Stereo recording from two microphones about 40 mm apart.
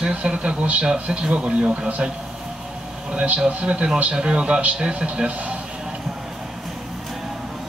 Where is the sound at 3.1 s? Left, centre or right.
Right.